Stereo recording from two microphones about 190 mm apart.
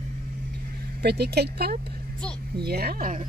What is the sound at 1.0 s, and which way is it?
Speech, 60° right (ahead or behind).